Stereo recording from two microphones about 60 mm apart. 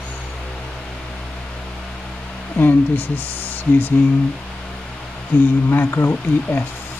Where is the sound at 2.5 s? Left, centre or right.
Left.